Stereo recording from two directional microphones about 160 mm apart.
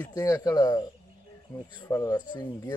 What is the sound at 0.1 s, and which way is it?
Speech, 20° left (ahead or behind).